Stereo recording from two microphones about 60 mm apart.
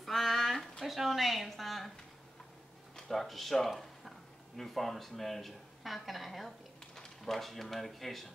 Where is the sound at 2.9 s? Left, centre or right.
Centre.